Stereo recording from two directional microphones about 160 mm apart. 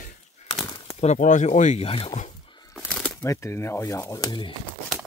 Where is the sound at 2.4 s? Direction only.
25° left (ahead or behind).